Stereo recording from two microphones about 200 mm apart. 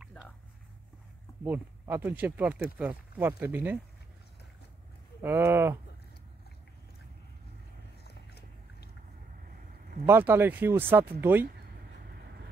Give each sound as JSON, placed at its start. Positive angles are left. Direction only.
{"t": 0.0, "sound": "a sound", "side_deg": -5}
{"t": 1.4, "sound": "speech", "side_deg": -10}
{"t": 5.2, "sound": "speech", "side_deg": -10}
{"t": 8.1, "sound": "biting", "side_deg": 55}
{"t": 10.0, "sound": "speech", "side_deg": -10}